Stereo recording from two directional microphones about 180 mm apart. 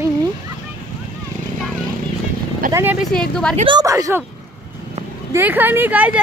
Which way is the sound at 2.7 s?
10° right (ahead or behind).